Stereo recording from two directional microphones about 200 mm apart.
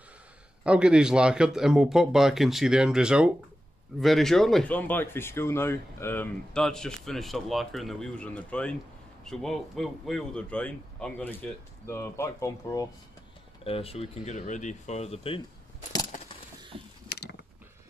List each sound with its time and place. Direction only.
0.7 s speech: 5° right (ahead or behind); by 12.8 s 15° left (ahead or behind)
13.7 s speech: 30° left (ahead or behind)
17.1 s biting: 55° left (ahead or behind)